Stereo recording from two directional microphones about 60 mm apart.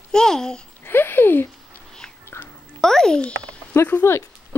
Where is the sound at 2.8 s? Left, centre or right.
Centre.